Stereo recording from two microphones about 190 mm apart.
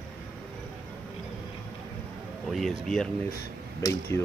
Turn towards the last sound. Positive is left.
turn(degrees=15)  # may be behind; listen again after turning